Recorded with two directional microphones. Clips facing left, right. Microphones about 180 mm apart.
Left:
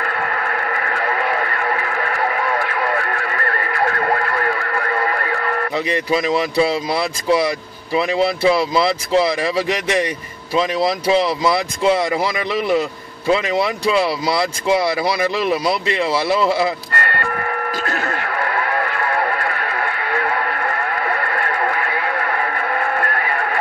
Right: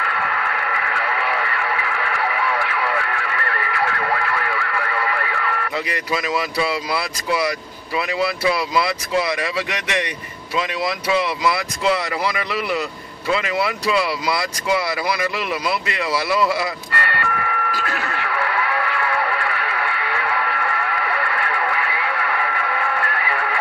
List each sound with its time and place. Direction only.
0.0 s radio: 45° left (ahead or behind)
5.9 s speech: 25° left (ahead or behind)
16.9 s a sound: 45° left (ahead or behind)